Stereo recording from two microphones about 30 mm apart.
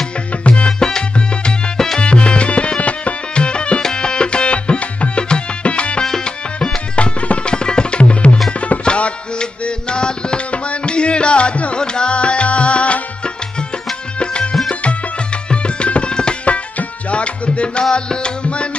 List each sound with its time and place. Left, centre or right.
0.4 s music: left
0.7 s music: left
2.0 s music: left
3.9 s tabla: left
5.6 s music: left
7.0 s tabla: left
7.4 s tabla: left
9.4 s music: left
11.7 s music: left
15.5 s tabla: left
16.4 s tabla: left
17.9 s music: left